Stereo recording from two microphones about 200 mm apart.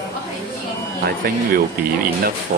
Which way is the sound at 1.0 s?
50° right (ahead or behind).